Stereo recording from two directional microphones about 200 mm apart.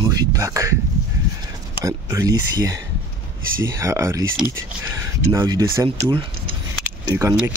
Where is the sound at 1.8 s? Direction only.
15° right (ahead or behind).